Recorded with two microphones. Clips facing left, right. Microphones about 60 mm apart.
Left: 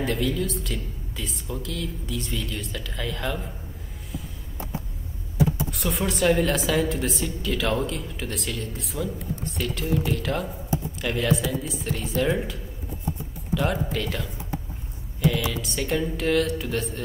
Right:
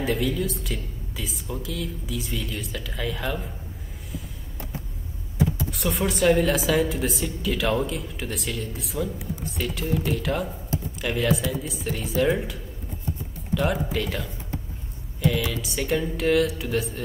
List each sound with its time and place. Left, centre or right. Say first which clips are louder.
0.0 s a woman's voice: right 1 dB; centre
5.7 s a woman's voice: right 1 dB; centre
13.6 s a woman's voice: right 1 dB; centre